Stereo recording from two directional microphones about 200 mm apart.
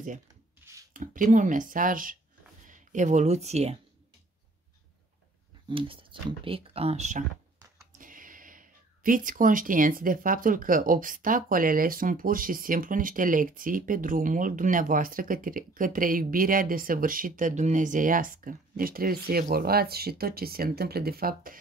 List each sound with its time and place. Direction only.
0.6 s a sound: 10° right (ahead or behind)
0.9 s speech: 45° right (ahead or behind)
5.7 s speech: 25° right (ahead or behind); by 21.5 s 45° right (ahead or behind)